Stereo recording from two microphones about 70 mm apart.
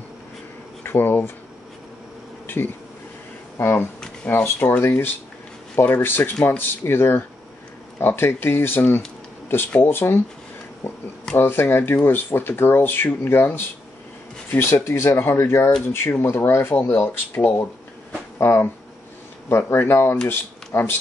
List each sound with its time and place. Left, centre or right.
0.8 s speech: left
2.4 s insect: left
3.5 s speech: left